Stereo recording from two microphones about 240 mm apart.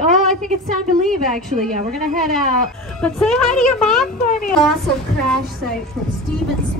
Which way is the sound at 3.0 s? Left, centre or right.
Centre.